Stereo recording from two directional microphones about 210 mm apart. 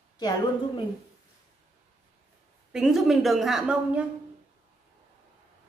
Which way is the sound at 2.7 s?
Centre (ahead or behind).